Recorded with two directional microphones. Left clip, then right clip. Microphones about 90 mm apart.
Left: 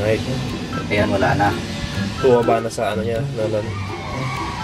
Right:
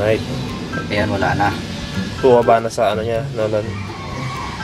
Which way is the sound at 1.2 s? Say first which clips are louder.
Even; 20° right (ahead or behind).